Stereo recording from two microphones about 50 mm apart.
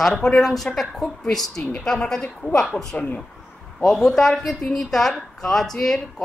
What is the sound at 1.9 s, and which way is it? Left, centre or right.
Speech, centre.